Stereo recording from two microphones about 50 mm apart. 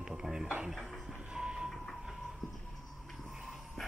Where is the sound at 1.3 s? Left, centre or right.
Centre.